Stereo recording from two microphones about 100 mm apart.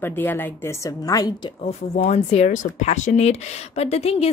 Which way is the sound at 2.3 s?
90° left.